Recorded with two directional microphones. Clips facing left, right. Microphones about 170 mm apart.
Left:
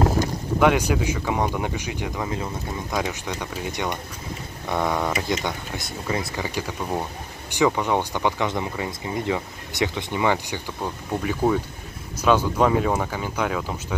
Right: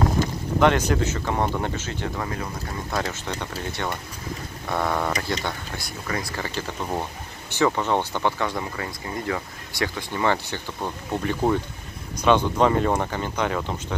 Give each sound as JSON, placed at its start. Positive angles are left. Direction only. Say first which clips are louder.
{"t": 0.6, "sound": "speech", "louder": "even", "side_deg": 10}
{"t": 10.8, "sound": "speech", "louder": "even", "side_deg": 5}